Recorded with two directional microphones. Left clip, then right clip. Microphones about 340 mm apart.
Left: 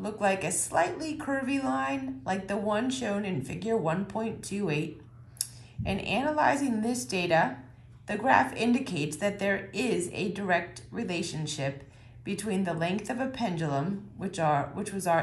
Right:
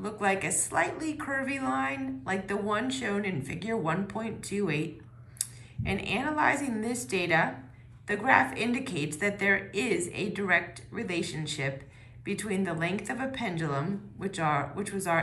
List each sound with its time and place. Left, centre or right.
0.0 s speech: centre